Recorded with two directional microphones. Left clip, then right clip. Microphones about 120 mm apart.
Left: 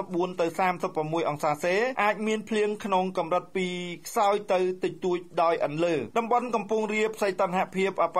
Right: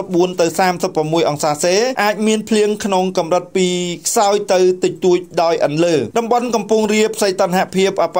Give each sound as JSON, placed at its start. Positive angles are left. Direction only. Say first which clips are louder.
{"t": 0.1, "sound": "speech", "louder": "right 14 dB", "side_deg": -25}